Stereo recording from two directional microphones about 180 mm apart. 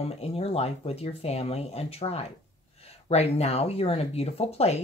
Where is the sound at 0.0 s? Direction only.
35° left (ahead or behind).